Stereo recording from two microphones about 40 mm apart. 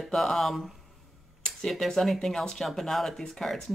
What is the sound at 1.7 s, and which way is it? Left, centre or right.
Speech, centre.